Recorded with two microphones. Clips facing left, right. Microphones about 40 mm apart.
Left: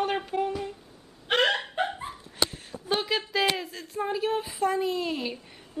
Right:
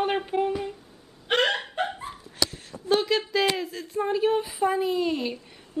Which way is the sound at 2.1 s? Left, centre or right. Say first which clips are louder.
Even; left.